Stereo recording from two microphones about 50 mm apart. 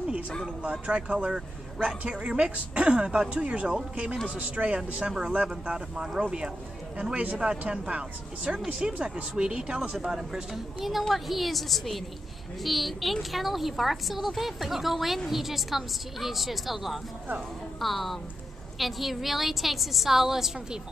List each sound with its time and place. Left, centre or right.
0.6 s a man's voice: right; by 20.8 s centre